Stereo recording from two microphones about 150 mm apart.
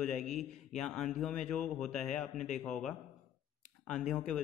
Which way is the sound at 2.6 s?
5° left (ahead or behind).